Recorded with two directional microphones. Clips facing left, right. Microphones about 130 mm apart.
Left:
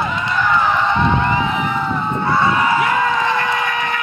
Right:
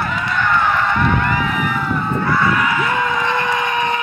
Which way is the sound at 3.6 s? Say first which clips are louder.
Right 2 dB; 25° right (ahead or behind).